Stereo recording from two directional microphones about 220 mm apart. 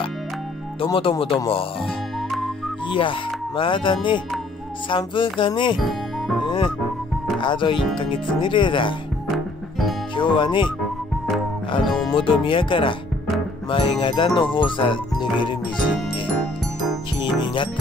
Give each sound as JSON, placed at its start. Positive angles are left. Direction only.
{"t": 0.7, "sound": "speech", "side_deg": 25}
{"t": 2.9, "sound": "speech", "side_deg": 25}
{"t": 5.8, "sound": "music", "side_deg": 0}
{"t": 6.4, "sound": "music", "side_deg": 20}
{"t": 7.3, "sound": "speech", "side_deg": 20}
{"t": 9.3, "sound": "music", "side_deg": 0}
{"t": 10.1, "sound": "speech", "side_deg": 20}
{"t": 11.8, "sound": "music", "side_deg": 0}
{"t": 12.2, "sound": "speech", "side_deg": 25}
{"t": 17.2, "sound": "jingle bell", "side_deg": 20}